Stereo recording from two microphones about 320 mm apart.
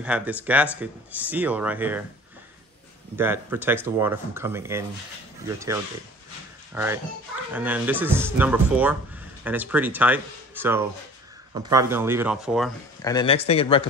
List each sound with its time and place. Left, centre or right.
0.0 s speech: centre
3.2 s speech: centre
6.7 s a child's voice: centre
13.0 s speech: centre